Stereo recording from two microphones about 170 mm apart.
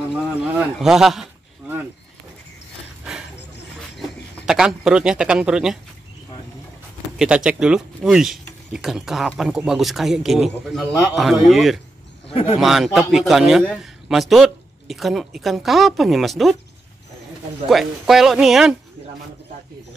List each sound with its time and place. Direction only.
0.1 s a sound: 5° right (ahead or behind)
4.5 s a man's voice: 5° right (ahead or behind)
7.2 s a man's voice: 5° right (ahead or behind)
12.3 s speech: 35° left (ahead or behind)
12.5 s a man's voice: centre (ahead or behind)
17.6 s a man's voice: centre (ahead or behind)